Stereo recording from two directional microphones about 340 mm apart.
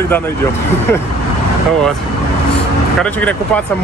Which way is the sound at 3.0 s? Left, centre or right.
Centre.